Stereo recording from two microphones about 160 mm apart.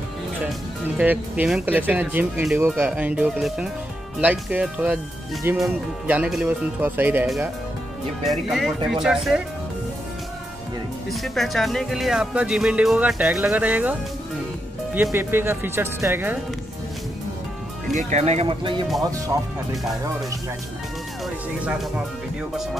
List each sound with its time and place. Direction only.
0.9 s speech: 10° right (ahead or behind)
8.3 s speech: centre (ahead or behind)
11.1 s speech: centre (ahead or behind)
15.1 s speech: 15° right (ahead or behind)
17.9 s speech: 45° right (ahead or behind); by 19.5 s 20° right (ahead or behind)